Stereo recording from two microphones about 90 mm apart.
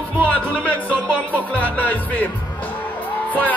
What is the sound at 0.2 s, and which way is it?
Music, 20° right (ahead or behind).